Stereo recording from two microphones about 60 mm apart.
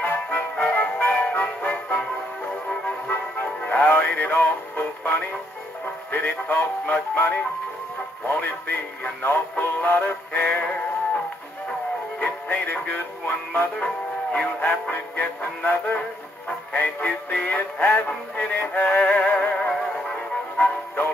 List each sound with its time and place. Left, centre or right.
0.0 s music: left
3.1 s music: left
4.0 s speech: left
6.1 s music: left
6.9 s synthetic singing: left
8.3 s music: left
12.2 s synthetic singing: left
13.7 s music: centre
14.7 s synthetic singing: left
19.5 s music: centre